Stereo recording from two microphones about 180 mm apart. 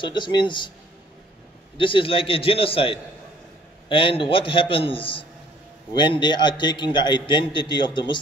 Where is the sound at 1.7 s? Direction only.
30° left (ahead or behind).